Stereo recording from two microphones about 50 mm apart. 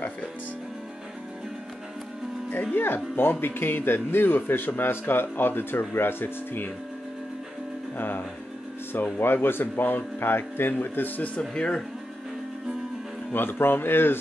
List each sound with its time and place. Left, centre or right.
2.7 s speech: left
8.0 s speech: left
11.5 s speech: centre
13.3 s speech: left